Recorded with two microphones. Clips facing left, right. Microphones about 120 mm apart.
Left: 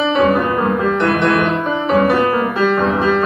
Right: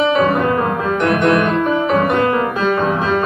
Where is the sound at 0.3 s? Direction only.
Centre (ahead or behind).